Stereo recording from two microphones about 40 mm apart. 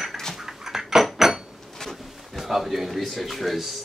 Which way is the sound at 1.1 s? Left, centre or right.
Centre.